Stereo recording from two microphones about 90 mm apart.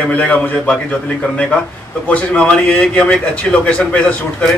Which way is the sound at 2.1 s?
15° left (ahead or behind).